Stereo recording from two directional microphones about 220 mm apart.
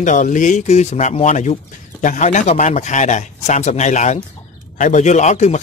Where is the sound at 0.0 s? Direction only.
35° left (ahead or behind).